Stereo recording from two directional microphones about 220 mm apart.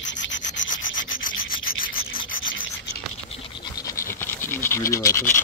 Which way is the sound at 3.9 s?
10° left (ahead or behind).